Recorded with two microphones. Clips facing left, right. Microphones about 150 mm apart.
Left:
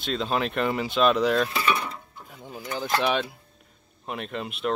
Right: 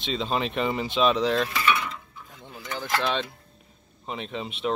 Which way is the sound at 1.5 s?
35° left (ahead or behind).